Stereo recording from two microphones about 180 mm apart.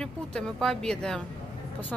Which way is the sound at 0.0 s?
5° left (ahead or behind).